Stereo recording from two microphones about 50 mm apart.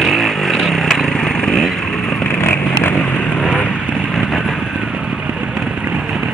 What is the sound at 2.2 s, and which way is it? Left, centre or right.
Vehicle, left.